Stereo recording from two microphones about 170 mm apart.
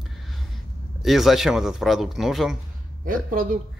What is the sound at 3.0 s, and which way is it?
Speech, 55° right (ahead or behind).